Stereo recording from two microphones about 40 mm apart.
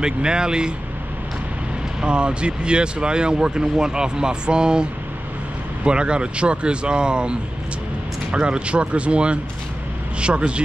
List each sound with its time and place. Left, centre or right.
0.0 s speech: right
2.0 s speech: right
5.9 s speech: right